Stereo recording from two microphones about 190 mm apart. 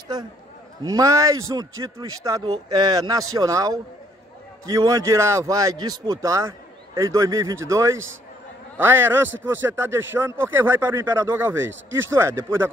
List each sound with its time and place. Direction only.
0.8 s a man's voice: 20° right (ahead or behind)